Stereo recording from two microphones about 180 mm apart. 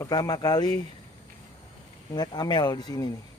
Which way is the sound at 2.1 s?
25° left (ahead or behind).